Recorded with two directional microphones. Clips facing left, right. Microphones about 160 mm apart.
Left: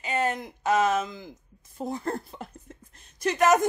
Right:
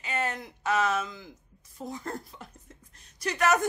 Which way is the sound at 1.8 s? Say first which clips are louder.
Left 6 dB; 60° left (ahead or behind).